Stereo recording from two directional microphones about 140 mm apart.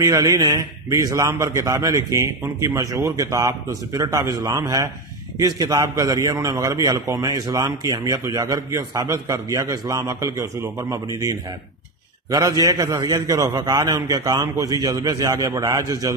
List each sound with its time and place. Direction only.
0.0 s a man's voice: 25° right (ahead or behind)